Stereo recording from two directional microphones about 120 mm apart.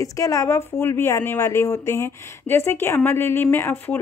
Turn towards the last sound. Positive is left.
turn(degrees=20)  # may be behind; listen again after turning